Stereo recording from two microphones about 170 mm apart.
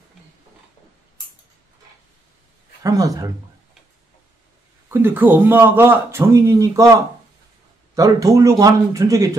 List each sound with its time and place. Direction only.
2.8 s speech: 20° right (ahead or behind)
4.8 s a man's voice: 10° right (ahead or behind)